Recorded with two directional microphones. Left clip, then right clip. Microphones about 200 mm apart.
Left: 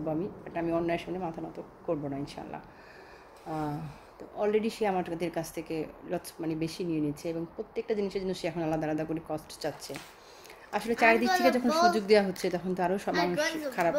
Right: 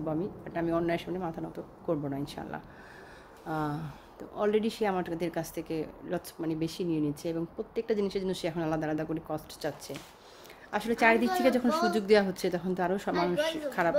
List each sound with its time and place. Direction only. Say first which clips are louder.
0.0 s speech: even; 5° right (ahead or behind)